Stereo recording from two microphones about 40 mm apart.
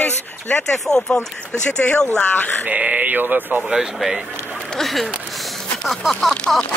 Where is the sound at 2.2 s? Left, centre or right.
Left.